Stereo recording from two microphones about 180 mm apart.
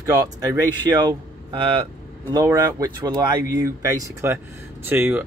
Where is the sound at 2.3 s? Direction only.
20° right (ahead or behind).